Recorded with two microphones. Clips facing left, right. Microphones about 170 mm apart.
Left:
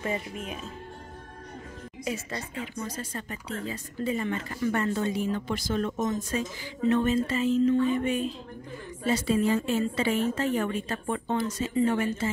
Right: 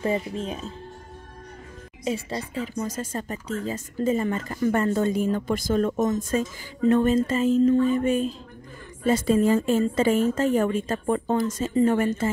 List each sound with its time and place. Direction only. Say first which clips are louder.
0.0 s speech: right 6 dB; 30° right (ahead or behind)
2.0 s speech: right 6 dB; 30° right (ahead or behind); by 12.3 s 50° right (ahead or behind)